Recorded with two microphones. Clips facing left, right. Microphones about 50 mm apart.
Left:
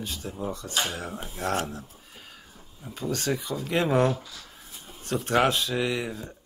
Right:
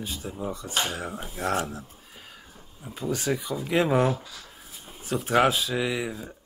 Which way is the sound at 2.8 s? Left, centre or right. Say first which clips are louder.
Right 1 dB; centre.